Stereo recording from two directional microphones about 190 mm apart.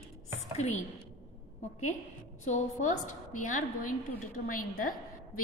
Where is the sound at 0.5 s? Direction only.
35° left (ahead or behind).